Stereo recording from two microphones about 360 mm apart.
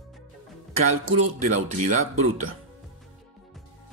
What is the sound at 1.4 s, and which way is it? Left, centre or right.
Speech, centre.